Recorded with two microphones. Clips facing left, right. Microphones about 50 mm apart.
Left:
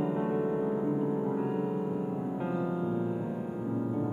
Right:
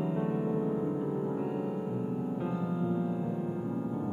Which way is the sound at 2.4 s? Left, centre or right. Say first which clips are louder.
Left 1 dB; centre.